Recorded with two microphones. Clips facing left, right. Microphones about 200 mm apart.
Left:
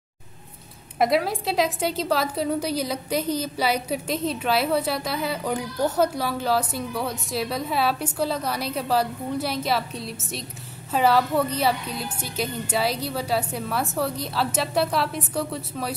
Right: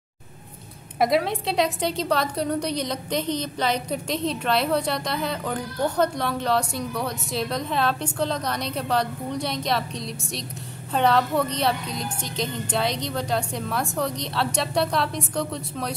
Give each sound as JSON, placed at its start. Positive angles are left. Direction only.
{"t": 0.9, "sound": "a woman's voice", "side_deg": 0}